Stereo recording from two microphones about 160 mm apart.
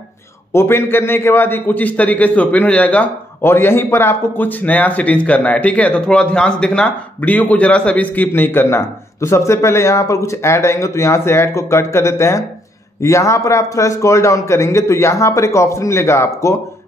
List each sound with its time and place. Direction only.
0.5 s a man's voice: 15° left (ahead or behind)